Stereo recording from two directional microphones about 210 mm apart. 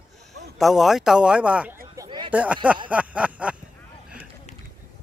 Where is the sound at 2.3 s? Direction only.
5° right (ahead or behind).